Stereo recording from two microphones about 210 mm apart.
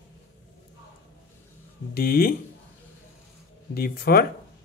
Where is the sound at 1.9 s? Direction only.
45° left (ahead or behind).